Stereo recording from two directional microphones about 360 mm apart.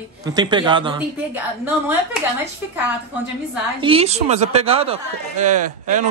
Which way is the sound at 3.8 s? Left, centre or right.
Centre.